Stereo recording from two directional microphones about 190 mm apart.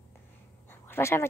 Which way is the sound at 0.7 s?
10° left (ahead or behind).